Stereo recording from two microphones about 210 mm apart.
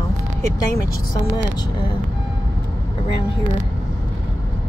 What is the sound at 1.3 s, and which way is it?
Speech, 20° left (ahead or behind).